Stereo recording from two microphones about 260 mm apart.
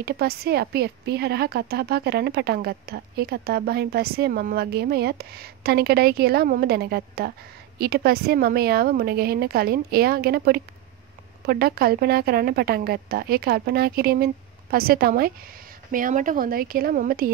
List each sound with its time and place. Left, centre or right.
0.0 s a woman's voice: right